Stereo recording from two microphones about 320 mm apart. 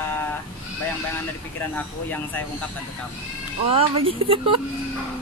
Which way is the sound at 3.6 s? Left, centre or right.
Centre.